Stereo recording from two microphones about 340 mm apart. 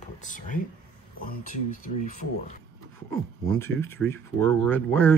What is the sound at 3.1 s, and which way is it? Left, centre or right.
Speech, centre.